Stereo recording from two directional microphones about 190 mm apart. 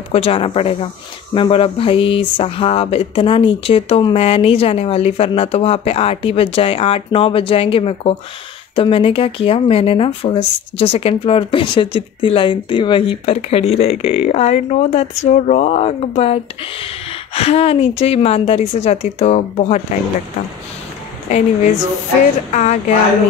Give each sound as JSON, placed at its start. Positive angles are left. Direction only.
{"t": 0.1, "sound": "speech", "side_deg": 30}
{"t": 21.3, "sound": "speech", "side_deg": 35}